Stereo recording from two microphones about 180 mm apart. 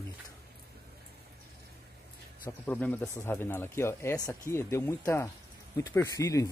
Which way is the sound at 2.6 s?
10° left (ahead or behind).